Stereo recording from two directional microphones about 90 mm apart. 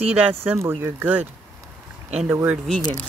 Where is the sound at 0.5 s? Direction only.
25° right (ahead or behind).